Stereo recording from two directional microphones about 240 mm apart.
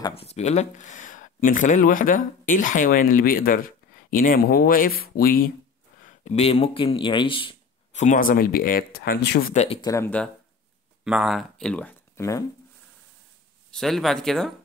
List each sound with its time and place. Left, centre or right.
0.0 s speech: left
6.0 s speech: left
9.5 s speech: left
13.7 s speech: centre